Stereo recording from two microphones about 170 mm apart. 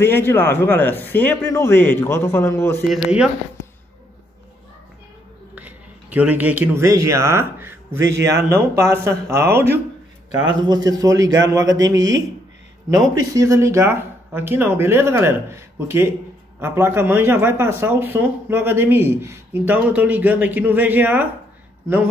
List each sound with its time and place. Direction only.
0.0 s a man's voice: 15° left (ahead or behind)
2.9 s speech: 5° right (ahead or behind)
5.5 s a man's voice: 10° right (ahead or behind)
10.7 s a man's voice: 20° right (ahead or behind)
13.1 s a man's voice: 20° right (ahead or behind)